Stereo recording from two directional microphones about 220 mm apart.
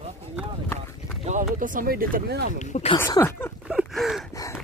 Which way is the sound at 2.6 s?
30° left (ahead or behind).